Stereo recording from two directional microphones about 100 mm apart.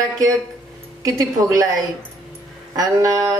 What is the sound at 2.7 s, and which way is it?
Speech, 35° right (ahead or behind).